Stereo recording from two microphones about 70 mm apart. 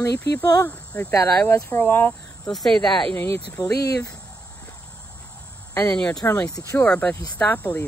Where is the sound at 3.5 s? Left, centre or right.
Left.